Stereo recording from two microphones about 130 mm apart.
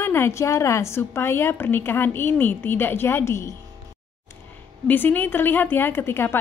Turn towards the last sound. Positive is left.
turn(degrees=20)  # may be behind; listen again after turning